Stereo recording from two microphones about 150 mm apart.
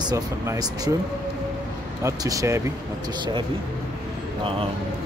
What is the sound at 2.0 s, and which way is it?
Speech, 20° right (ahead or behind).